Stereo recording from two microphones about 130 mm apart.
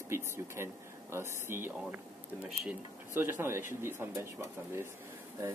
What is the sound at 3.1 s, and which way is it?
Speech, 15° right (ahead or behind).